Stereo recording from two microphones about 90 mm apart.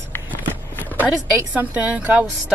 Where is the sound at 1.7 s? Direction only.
15° right (ahead or behind).